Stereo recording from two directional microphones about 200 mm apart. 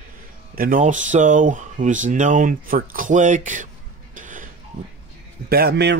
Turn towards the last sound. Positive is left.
turn(degrees=-55)  # may be behind; listen again after turning